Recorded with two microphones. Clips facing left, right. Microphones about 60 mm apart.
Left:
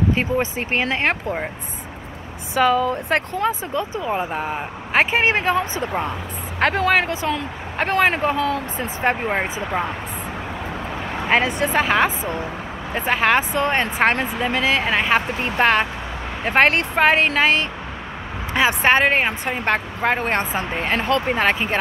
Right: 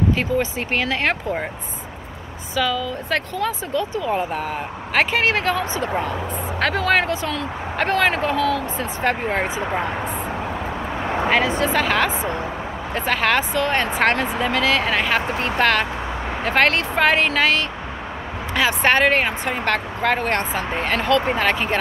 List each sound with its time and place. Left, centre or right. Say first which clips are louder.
0.1 s speech: even; left
0.6 s speech: left 1 dB; centre
2.5 s speech: left 5 dB; left
9.1 s speech: even; centre
11.2 s speech: left 1 dB; left
12.1 s speech: right 2 dB; right
12.9 s speech: left 2 dB; left
18.8 s speech: right 1 dB; centre